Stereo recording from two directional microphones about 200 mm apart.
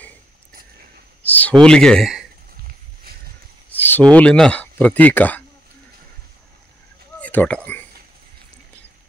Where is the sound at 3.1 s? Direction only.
50° right (ahead or behind).